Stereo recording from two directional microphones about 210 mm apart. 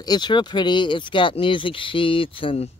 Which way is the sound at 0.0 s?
20° left (ahead or behind).